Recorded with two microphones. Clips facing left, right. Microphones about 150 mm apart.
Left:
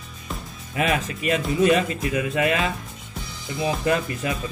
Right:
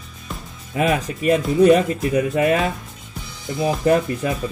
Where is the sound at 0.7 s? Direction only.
40° right (ahead or behind).